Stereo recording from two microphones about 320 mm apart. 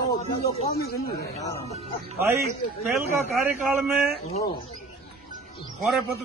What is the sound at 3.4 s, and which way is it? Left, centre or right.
Speech, centre.